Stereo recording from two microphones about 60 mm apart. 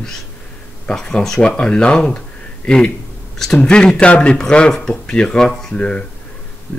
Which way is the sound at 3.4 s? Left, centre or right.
Centre.